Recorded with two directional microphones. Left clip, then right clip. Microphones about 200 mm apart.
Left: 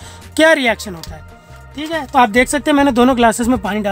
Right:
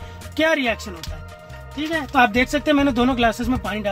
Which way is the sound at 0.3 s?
60° left (ahead or behind).